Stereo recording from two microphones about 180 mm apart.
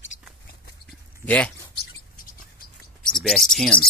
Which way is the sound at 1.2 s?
5° left (ahead or behind).